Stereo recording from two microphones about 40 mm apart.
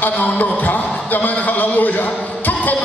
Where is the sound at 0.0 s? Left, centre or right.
Left.